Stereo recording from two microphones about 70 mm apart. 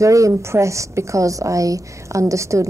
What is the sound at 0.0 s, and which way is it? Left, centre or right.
A woman's voice, right.